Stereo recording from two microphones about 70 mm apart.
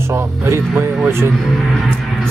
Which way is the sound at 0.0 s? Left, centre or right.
Right.